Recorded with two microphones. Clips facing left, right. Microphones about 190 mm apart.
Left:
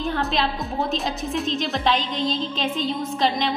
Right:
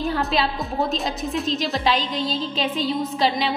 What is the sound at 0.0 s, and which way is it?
A woman's voice, centre (ahead or behind).